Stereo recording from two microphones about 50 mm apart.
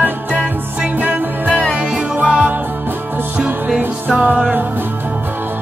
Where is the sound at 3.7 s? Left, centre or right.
Right.